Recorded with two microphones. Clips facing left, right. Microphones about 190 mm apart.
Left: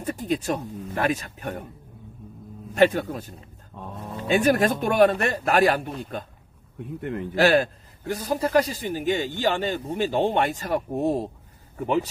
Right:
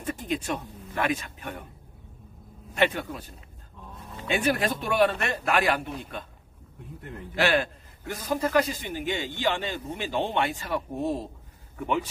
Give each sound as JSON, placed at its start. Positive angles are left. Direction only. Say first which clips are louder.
{"t": 0.0, "sound": "speech", "louder": "left 4 dB", "side_deg": 40}
{"t": 2.7, "sound": "speech", "louder": "left 6 dB", "side_deg": 40}
{"t": 7.0, "sound": "a man's voice", "louder": "left 11 dB", "side_deg": 70}
{"t": 7.3, "sound": "a man's voice", "louder": "left 5 dB", "side_deg": 40}